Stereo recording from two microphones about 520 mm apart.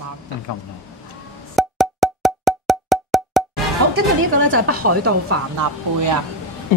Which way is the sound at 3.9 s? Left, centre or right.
Right.